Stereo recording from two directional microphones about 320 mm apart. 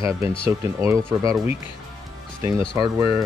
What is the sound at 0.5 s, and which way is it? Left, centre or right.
Speech, centre.